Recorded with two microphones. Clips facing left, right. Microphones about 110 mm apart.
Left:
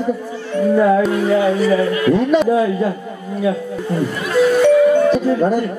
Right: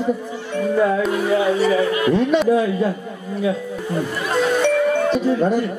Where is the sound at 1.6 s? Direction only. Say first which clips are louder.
Left 2 dB; 20° right (ahead or behind).